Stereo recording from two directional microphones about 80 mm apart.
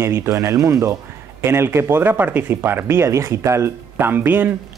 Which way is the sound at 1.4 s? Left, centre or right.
Right.